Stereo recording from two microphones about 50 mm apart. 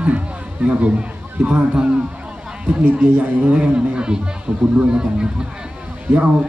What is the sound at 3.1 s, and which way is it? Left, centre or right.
Speech, right.